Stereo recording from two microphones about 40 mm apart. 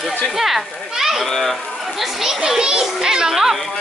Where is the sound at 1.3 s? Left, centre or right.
Centre.